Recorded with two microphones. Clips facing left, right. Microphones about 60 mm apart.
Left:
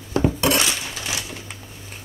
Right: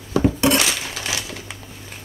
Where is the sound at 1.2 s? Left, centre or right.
Right.